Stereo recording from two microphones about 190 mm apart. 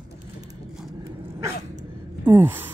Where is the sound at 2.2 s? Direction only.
10° right (ahead or behind).